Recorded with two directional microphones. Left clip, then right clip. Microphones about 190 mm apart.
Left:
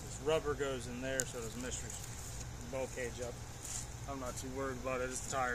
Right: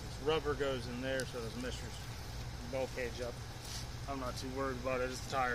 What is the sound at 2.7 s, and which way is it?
Speech, centre (ahead or behind).